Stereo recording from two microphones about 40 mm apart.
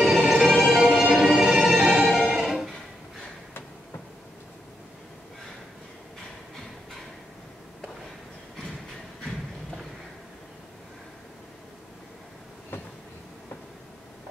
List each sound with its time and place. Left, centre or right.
0.0 s music: centre